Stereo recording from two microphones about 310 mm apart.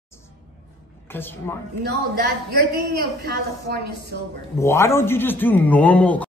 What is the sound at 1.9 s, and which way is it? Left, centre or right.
A woman's voice, right.